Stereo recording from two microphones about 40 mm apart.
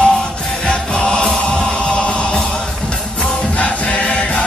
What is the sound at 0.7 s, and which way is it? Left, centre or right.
Music, left.